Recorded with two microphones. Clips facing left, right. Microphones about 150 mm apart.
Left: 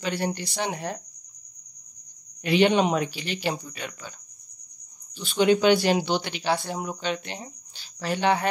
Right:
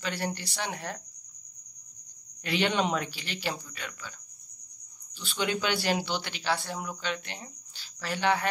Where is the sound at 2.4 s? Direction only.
20° left (ahead or behind).